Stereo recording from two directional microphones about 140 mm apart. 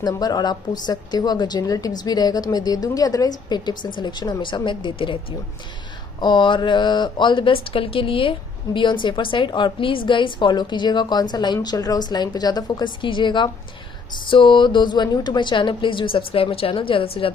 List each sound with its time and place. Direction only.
0.0 s a woman's voice: 30° left (ahead or behind)
6.2 s a woman's voice: 35° left (ahead or behind)